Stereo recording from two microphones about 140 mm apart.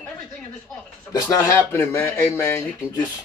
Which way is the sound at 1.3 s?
20° left (ahead or behind).